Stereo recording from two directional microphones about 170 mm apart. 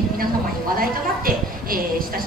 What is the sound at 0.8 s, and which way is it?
A woman's voice, 55° right (ahead or behind).